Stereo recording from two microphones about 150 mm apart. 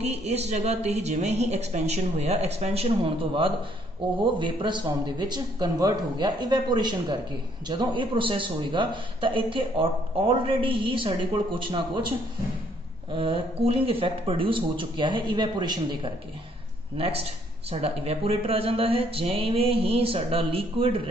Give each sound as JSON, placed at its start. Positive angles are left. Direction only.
{"t": 0.0, "sound": "a woman's voice", "side_deg": -45}
{"t": 13.1, "sound": "a man's voice", "side_deg": -35}
{"t": 16.9, "sound": "a man's voice", "side_deg": -40}